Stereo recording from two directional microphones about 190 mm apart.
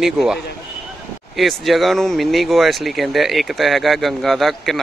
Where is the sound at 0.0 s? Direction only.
Centre (ahead or behind).